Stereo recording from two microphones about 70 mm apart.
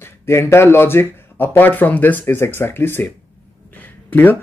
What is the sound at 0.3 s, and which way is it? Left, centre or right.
Speech, left.